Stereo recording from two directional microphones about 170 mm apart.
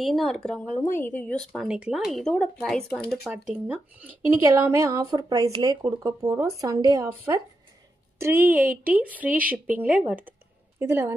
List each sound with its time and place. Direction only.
0.0 s speech: centre (ahead or behind)
0.8 s speech: 10° left (ahead or behind); by 11.1 s 15° right (ahead or behind)